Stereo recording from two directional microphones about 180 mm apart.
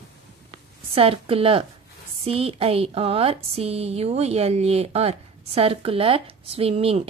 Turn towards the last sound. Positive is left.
turn(degrees=-35)  # may be behind; listen again after turning